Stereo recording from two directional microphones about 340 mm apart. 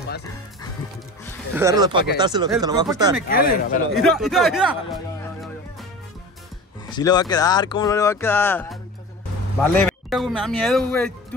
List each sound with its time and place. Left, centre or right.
1.5 s speech: centre
3.3 s speech: left
3.9 s speech: centre
6.9 s speech: centre